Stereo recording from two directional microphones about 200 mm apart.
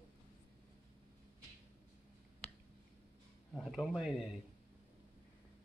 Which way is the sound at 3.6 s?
Centre (ahead or behind).